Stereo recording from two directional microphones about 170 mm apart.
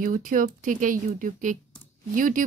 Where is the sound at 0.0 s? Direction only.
50° right (ahead or behind).